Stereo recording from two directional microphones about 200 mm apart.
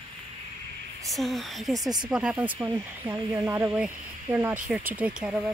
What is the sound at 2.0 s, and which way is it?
Speech, 5° right (ahead or behind).